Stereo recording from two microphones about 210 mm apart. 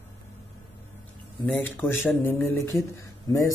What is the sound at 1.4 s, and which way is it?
A man's voice, 5° left (ahead or behind).